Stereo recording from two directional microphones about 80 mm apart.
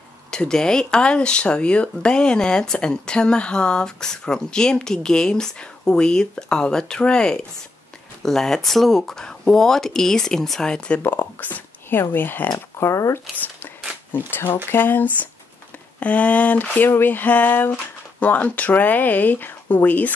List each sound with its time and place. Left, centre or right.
0.3 s speech: centre
11.0 s speech: left
14.3 s speech: left